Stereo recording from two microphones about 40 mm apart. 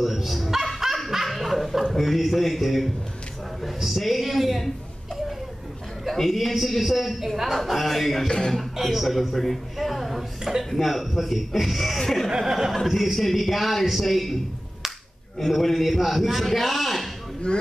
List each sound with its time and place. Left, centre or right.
0.0 s speech: centre
1.1 s snicker: centre
1.9 s a man's voice: centre
6.1 s a man's voice: centre
8.3 s speech: centre
8.5 s a man's voice: centre
12.3 s a man's voice: centre
15.3 s a man's voice: centre